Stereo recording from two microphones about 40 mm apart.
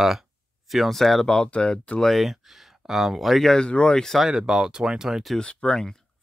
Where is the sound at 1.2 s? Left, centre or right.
Left.